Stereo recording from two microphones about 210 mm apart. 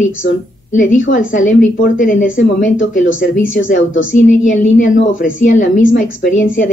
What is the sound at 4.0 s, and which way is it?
Speech, 65° left (ahead or behind).